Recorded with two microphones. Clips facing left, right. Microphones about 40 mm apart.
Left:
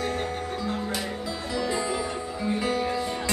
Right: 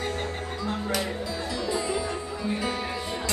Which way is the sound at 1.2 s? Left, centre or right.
Left.